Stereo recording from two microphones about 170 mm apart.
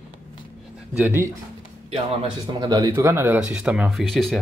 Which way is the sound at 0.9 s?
10° right (ahead or behind).